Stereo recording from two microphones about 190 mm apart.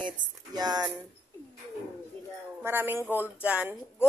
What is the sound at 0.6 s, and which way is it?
Speech, 20° right (ahead or behind).